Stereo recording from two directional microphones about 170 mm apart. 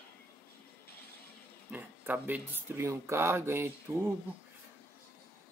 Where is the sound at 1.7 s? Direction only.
10° right (ahead or behind).